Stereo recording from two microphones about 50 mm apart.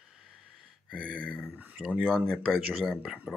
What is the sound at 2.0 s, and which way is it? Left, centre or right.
Speech, centre.